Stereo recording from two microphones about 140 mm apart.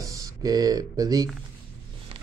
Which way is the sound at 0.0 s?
25° right (ahead or behind).